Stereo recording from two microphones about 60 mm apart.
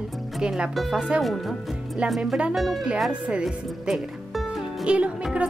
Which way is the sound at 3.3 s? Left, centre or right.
Centre.